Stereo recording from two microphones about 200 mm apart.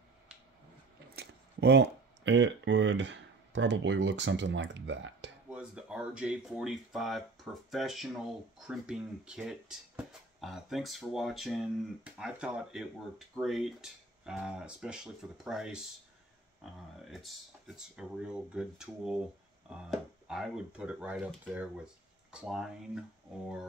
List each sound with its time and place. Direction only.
1.1 s speech: 55° right (ahead or behind)
5.5 s speech: 5° right (ahead or behind)
17.7 s speech: 5° right (ahead or behind)